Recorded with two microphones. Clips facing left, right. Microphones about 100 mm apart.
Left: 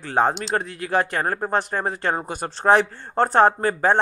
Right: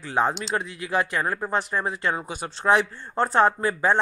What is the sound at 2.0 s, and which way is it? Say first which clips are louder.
Speech: left 3 dB; 45° left (ahead or behind).